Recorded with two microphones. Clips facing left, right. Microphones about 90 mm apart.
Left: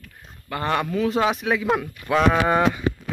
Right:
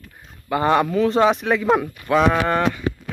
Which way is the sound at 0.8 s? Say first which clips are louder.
Right 5 dB; centre (ahead or behind).